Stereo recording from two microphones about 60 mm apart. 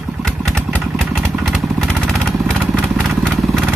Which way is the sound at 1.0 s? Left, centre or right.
Right.